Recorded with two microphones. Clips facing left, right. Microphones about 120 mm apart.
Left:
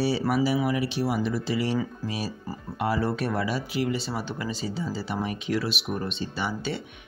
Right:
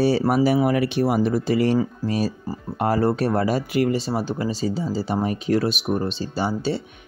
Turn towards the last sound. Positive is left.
turn(degrees=-35)  # may be behind; listen again after turning